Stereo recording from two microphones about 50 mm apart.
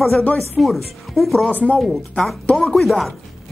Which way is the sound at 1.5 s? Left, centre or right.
Left.